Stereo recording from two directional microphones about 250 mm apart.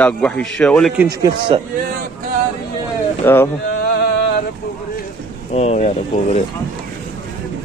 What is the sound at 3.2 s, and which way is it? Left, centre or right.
Speech, centre.